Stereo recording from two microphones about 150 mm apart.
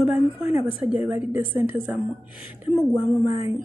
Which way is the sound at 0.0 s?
10° right (ahead or behind).